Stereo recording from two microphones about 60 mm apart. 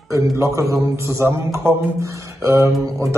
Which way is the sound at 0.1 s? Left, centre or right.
Right.